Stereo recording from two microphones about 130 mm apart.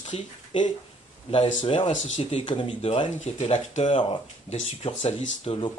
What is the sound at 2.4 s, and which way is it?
Speech, 40° left (ahead or behind).